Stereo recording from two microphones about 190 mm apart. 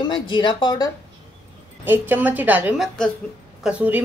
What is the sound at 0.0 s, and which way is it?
Speech, 25° left (ahead or behind).